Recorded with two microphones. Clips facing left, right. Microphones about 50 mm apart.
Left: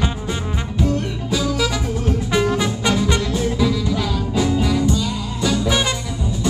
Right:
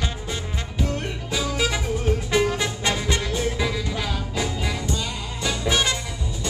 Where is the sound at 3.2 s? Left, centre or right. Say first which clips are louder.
Left 5 dB; centre.